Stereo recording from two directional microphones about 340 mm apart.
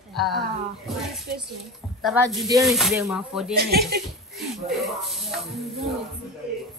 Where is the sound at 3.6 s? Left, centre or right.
Right.